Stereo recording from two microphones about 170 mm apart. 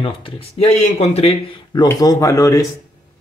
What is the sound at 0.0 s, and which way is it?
Speech, 30° left (ahead or behind).